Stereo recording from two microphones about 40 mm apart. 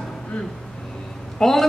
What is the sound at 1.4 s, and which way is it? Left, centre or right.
Speech, centre.